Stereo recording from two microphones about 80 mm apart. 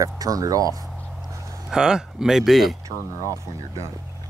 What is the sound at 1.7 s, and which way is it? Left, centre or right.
Speech, centre.